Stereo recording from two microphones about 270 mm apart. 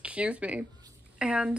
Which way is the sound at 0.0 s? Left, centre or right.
Centre.